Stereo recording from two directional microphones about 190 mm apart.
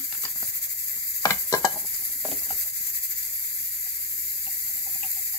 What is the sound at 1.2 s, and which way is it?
Stir, 20° left (ahead or behind).